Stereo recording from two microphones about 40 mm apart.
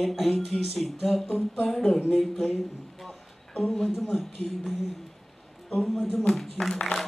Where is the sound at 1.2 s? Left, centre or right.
Left.